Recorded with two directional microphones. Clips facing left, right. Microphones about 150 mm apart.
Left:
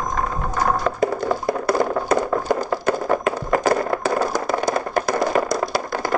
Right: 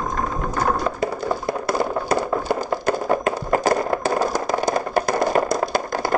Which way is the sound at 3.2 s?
30° right (ahead or behind).